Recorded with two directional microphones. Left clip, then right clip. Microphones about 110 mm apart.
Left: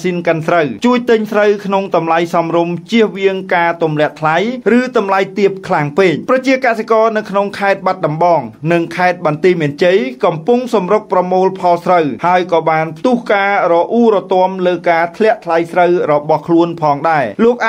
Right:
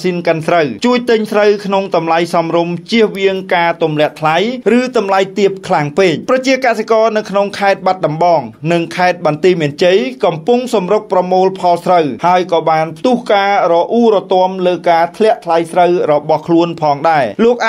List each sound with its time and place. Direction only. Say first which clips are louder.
0.0 s speech: right 1 dB; 10° right (ahead or behind)